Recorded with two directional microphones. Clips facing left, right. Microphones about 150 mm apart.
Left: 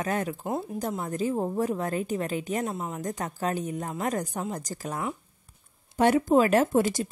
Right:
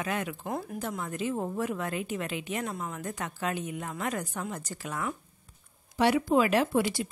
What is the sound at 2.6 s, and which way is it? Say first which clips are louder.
Speech: left 4 dB; 30° left (ahead or behind).